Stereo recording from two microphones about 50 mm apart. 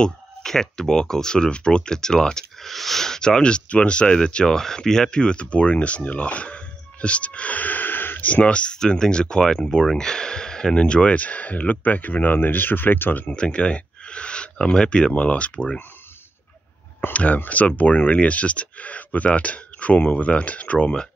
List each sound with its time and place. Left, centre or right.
0.0 s speech: centre
4.5 s speech: centre; by 8.3 s left
8.3 s speech: left
13.4 s speech: left
17.1 s speech: left